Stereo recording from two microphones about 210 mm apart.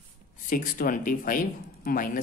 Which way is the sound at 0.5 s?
40° left (ahead or behind).